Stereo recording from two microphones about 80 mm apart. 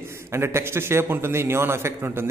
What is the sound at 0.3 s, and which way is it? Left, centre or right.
A man's voice, right.